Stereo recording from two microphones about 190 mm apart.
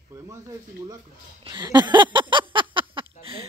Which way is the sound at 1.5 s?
20° right (ahead or behind).